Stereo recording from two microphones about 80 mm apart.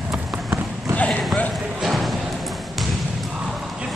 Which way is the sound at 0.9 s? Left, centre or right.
Centre.